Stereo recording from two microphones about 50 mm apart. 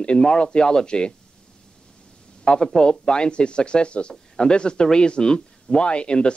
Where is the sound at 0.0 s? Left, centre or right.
Centre.